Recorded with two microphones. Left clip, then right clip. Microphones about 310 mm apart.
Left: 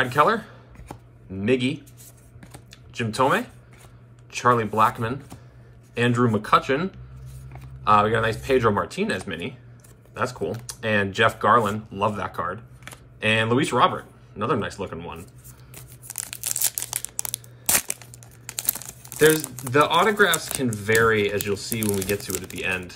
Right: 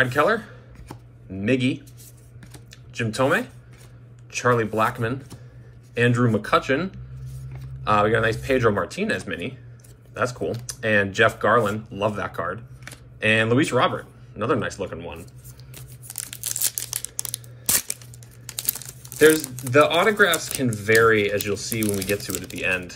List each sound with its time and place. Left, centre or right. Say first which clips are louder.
0.0 s speech: even; centre
16.4 s tearing: even; centre
18.6 s speech: even; centre